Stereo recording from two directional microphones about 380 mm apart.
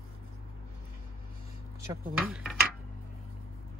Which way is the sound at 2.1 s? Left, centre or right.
Centre.